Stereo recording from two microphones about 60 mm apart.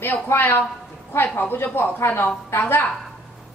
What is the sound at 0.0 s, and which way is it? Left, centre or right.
A woman's voice, left.